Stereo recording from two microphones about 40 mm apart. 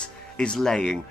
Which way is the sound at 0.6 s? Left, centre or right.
Centre.